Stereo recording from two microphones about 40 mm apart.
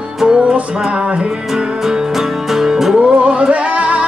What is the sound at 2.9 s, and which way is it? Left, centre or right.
Music, right.